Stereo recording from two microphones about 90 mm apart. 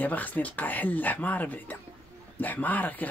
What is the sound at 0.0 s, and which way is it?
Speech, 20° left (ahead or behind).